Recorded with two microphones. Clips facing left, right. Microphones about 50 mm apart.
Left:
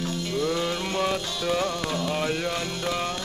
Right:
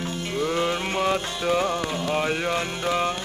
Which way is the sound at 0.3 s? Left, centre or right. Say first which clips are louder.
Right 3 dB; right.